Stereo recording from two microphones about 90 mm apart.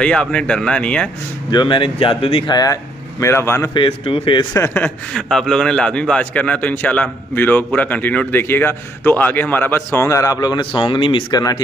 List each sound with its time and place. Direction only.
0.0 s a man's voice: 10° left (ahead or behind)
1.5 s speech: 60° left (ahead or behind); by 2.5 s 80° left
2.5 s speech: 40° left (ahead or behind)
3.7 s speech: 80° left
5.1 s a man's voice: 5° left (ahead or behind); by 9.8 s 25° left (ahead or behind)
9.9 s speech: 35° left (ahead or behind); by 11.3 s 70° left (ahead or behind)
11.3 s speech: 45° left (ahead or behind)